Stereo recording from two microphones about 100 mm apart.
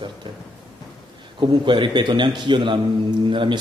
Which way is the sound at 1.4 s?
55° right (ahead or behind).